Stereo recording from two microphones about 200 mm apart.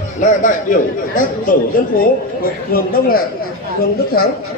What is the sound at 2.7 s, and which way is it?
Speech, 50° left (ahead or behind).